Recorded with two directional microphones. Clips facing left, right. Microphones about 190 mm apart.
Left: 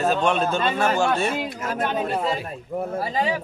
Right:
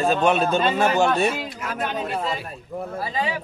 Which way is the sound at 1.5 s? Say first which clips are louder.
Left 3 dB; 45° left (ahead or behind).